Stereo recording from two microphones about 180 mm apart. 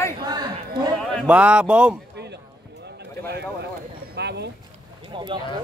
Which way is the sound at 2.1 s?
70° right (ahead or behind).